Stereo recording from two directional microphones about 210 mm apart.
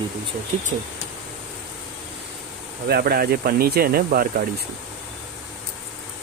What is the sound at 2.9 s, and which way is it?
Speech, 50° right (ahead or behind).